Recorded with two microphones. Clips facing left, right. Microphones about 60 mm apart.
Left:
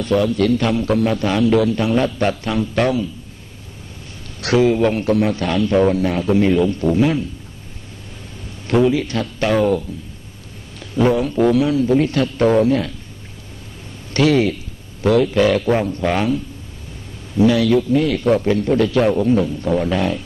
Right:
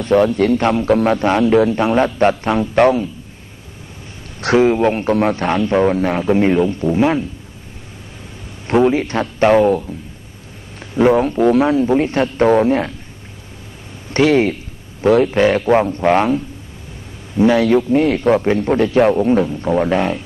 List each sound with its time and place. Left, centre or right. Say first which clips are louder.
0.3 s a man's voice: right 2 dB; right
4.4 s a man's voice: right 2 dB; right
6.8 s a man's voice: right 1 dB; right
8.6 s a man's voice: right 2 dB; right
14.1 s a man's voice: right 2 dB; right
17.4 s a man's voice: right 2 dB; right